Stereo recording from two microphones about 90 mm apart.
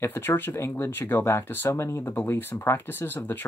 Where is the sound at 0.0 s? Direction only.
25° left (ahead or behind).